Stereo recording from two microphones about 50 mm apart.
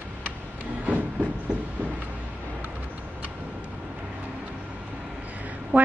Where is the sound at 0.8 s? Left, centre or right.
Right.